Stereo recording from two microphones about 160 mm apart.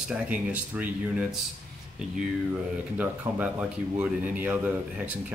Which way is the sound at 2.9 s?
10° right (ahead or behind).